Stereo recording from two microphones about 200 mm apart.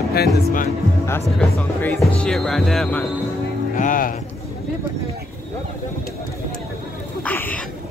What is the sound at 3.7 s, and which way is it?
Speech, 40° left (ahead or behind).